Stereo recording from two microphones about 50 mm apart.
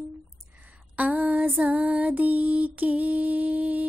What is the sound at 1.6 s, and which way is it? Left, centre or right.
Music, right.